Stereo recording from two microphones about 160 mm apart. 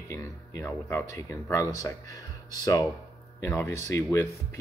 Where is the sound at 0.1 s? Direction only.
20° left (ahead or behind).